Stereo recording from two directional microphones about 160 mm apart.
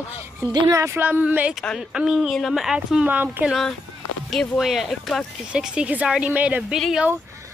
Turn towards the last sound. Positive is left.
turn(degrees=0)  # may be behind; listen again after turning